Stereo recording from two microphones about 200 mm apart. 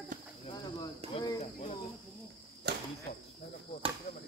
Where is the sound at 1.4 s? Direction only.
30° left (ahead or behind).